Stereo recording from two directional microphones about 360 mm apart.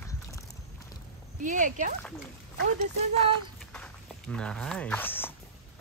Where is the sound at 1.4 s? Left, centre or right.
Right.